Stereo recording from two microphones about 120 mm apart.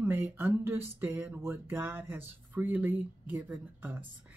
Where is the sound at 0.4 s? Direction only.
20° right (ahead or behind).